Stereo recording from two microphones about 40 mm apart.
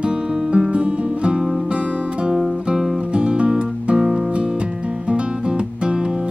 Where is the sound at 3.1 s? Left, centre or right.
Right.